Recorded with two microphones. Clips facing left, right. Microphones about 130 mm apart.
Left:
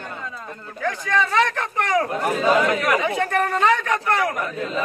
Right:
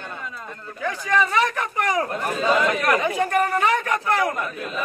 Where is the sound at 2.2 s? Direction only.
15° left (ahead or behind).